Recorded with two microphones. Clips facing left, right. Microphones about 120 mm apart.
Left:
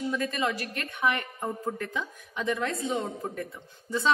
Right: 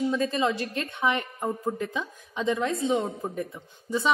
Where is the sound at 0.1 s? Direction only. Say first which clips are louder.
Right 4 dB; 25° right (ahead or behind).